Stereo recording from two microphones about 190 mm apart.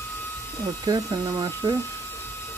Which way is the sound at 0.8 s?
20° right (ahead or behind).